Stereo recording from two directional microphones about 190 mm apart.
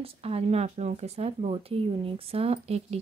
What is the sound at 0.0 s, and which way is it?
Speech, 30° right (ahead or behind).